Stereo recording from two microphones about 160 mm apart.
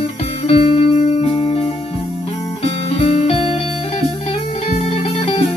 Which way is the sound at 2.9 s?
45° left (ahead or behind).